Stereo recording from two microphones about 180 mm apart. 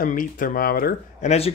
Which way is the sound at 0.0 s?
50° left (ahead or behind).